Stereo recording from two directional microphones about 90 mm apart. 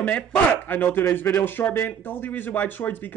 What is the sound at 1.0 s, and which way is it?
Speech, 30° left (ahead or behind).